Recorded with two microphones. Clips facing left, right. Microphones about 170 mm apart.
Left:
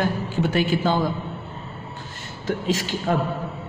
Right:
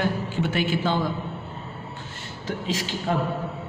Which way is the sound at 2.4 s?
50° left (ahead or behind).